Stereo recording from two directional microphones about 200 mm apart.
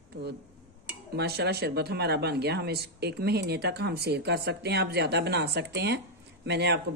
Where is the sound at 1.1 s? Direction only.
55° right (ahead or behind).